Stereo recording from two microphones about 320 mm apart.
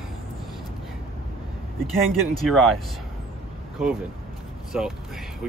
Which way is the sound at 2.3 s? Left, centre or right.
Centre.